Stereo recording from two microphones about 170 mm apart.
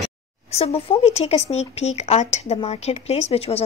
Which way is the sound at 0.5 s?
40° left (ahead or behind).